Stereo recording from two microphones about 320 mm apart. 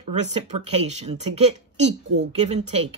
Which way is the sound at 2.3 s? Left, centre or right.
Right.